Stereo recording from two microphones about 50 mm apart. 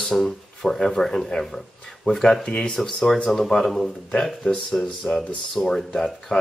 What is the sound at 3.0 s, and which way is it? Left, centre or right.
Speech, centre.